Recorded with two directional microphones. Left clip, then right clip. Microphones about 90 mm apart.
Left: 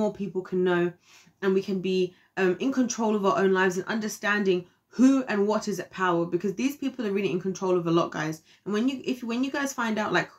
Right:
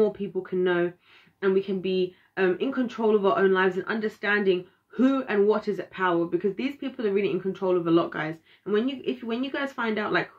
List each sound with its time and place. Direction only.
0.0 s speech: 35° left (ahead or behind)